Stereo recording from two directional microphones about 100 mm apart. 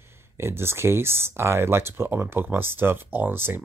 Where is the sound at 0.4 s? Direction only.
25° right (ahead or behind).